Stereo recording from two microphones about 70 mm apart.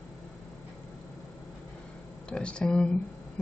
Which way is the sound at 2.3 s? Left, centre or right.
Centre.